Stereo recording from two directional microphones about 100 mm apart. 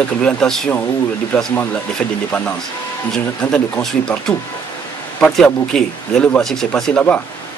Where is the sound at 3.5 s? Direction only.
5° left (ahead or behind).